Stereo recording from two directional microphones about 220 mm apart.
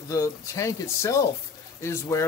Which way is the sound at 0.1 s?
15° left (ahead or behind).